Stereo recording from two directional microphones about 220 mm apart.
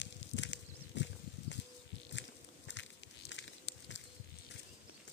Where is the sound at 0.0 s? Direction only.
55° left (ahead or behind).